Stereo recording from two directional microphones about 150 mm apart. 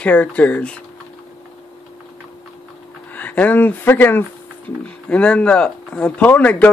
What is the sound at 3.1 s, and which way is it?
Speech, 10° left (ahead or behind).